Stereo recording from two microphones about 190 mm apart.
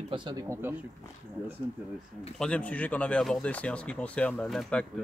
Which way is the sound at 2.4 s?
5° left (ahead or behind).